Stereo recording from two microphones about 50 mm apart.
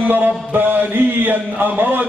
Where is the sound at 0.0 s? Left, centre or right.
Right.